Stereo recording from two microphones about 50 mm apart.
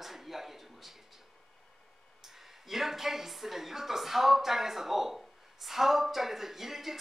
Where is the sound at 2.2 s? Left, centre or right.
Centre.